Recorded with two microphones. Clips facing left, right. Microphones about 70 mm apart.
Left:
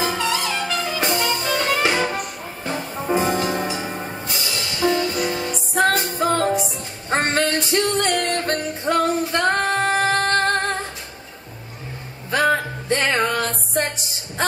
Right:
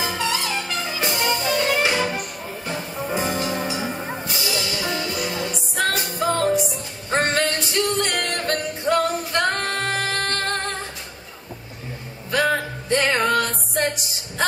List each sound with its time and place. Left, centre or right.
0.0 s music: left
12.3 s music: left